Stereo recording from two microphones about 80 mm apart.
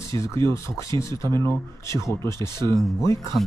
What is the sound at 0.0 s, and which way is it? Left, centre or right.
Speech, left.